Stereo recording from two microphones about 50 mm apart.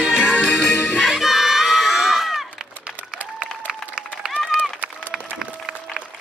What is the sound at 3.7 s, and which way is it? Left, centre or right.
Applause, centre.